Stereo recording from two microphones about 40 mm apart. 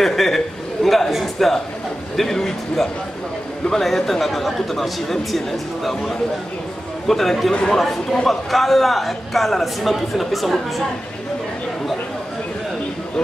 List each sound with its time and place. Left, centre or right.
0.0 s a man's voice: centre
7.1 s a man's voice: centre
8.5 s a man's voice: centre